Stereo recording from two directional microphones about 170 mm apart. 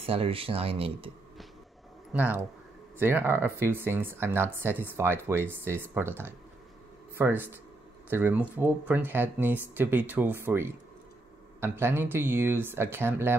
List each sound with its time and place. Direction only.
0.0 s speech: 35° right (ahead or behind)
2.1 s speech: 10° right (ahead or behind)